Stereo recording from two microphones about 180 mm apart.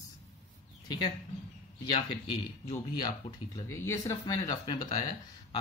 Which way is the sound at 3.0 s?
20° left (ahead or behind).